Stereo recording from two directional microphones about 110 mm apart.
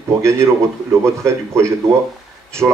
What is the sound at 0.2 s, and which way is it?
A man's voice, 25° right (ahead or behind).